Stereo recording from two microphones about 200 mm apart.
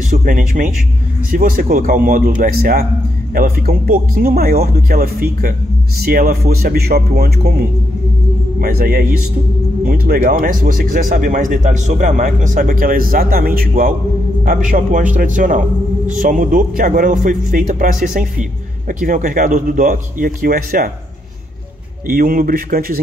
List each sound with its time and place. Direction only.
0.1 s a man's voice: 45° right (ahead or behind)
22.0 s speech: 45° right (ahead or behind)